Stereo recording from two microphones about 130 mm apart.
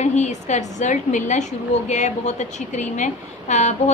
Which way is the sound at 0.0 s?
60° left (ahead or behind).